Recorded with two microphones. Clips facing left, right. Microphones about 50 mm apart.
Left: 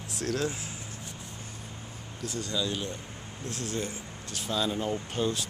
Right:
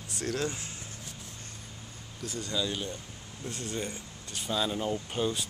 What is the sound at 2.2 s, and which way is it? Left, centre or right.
Speech, centre.